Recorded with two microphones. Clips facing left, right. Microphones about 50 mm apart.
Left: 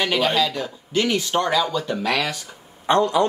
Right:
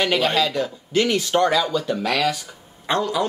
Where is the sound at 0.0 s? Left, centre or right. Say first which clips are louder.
Right 1 dB; centre.